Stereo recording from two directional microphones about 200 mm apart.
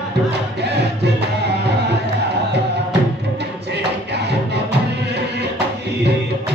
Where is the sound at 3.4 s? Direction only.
55° right (ahead or behind).